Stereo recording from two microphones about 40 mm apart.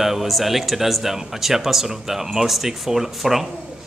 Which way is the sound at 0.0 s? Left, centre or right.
Centre.